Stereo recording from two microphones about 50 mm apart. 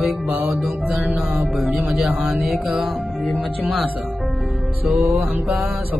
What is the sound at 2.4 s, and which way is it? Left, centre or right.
Speech, centre.